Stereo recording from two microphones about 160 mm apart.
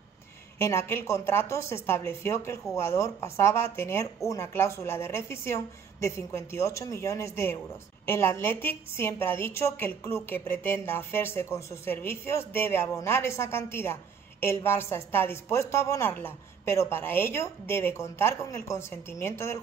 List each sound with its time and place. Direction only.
0.6 s a woman's voice: 15° left (ahead or behind)